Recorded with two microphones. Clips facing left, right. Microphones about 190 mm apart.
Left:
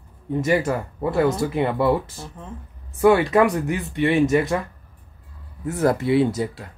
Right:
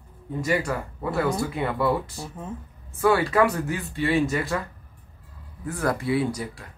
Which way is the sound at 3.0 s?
20° left (ahead or behind).